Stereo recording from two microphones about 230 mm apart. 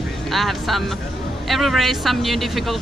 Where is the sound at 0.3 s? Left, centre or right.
Centre.